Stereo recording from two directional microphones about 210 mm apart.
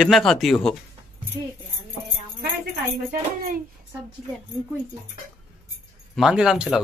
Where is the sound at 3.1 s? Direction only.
40° right (ahead or behind).